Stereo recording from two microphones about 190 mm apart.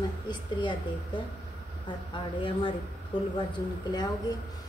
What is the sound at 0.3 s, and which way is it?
Speech, 25° left (ahead or behind).